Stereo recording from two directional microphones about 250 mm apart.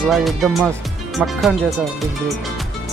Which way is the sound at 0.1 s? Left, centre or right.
Centre.